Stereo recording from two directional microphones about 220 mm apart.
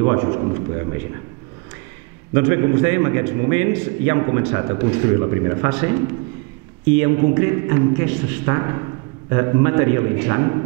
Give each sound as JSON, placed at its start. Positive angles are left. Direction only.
{"t": 0.0, "sound": "a man's voice", "side_deg": -20}
{"t": 2.3, "sound": "a man's voice", "side_deg": -15}